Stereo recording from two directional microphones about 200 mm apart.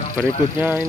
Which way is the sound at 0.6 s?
10° right (ahead or behind).